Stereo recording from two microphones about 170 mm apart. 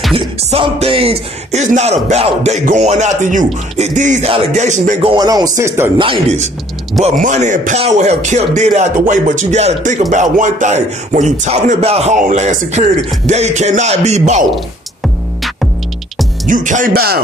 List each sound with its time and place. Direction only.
0.1 s music: 35° right (ahead or behind)
3.7 s speech: 45° right (ahead or behind)
5.1 s speech: 20° right (ahead or behind)
7.0 s speech: 45° right (ahead or behind)
13.3 s music: 40° right (ahead or behind)
16.4 s speech: 50° right (ahead or behind); by 17.2 s 65° right (ahead or behind)